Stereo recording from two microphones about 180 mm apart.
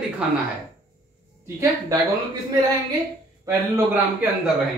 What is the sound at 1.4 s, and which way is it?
Speech, 15° right (ahead or behind).